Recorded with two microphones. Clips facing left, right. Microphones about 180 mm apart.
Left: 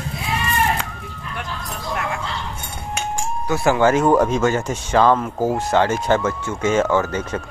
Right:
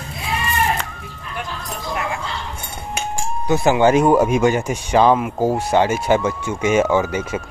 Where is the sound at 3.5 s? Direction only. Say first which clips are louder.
Right 2 dB; 20° right (ahead or behind).